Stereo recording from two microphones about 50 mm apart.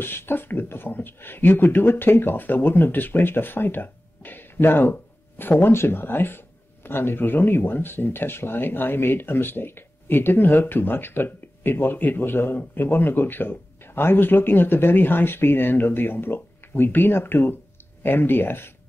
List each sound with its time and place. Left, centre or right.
0.0 s speech: left